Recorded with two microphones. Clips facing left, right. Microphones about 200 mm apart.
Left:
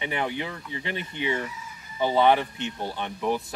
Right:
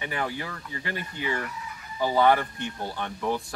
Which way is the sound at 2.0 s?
20° left (ahead or behind).